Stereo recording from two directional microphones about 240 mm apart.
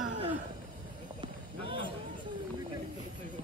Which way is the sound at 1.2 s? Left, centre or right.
Right.